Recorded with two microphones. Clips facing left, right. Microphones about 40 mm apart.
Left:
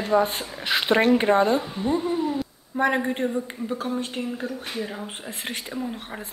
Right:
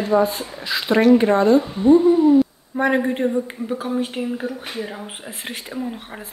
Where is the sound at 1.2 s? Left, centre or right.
Centre.